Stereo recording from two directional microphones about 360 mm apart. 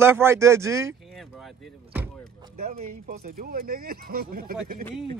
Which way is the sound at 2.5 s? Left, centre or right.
Right.